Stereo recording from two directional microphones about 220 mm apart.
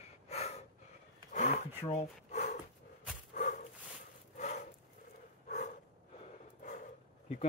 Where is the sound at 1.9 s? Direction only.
30° left (ahead or behind).